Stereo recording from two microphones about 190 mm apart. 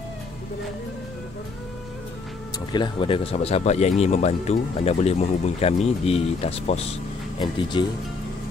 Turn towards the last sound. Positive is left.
turn(degrees=25)  # may be behind; listen again after turning